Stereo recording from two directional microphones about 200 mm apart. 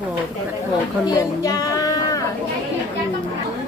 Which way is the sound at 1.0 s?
20° left (ahead or behind).